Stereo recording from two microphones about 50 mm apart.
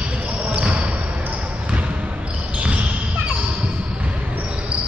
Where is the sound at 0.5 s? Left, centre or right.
Right.